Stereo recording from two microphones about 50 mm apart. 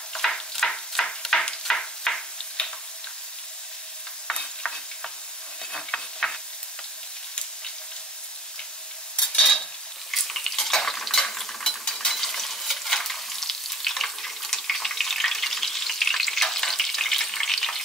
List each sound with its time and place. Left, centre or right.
0.1 s a sound: centre
4.3 s stir: centre
9.1 s stir: centre
9.4 s stir: centre